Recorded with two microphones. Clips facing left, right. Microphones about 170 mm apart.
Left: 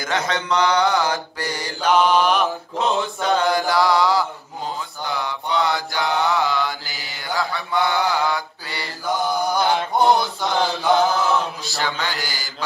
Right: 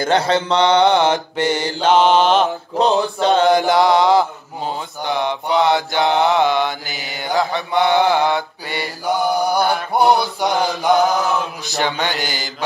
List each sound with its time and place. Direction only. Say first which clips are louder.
0.0 s mantra: right 7 dB; 30° right (ahead or behind)